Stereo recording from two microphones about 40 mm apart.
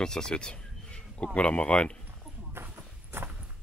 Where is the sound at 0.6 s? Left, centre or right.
Centre.